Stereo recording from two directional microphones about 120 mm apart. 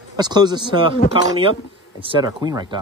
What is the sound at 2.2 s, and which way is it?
Speech, 35° right (ahead or behind).